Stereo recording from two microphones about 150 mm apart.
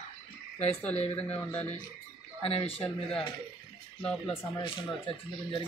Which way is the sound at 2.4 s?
40° left (ahead or behind).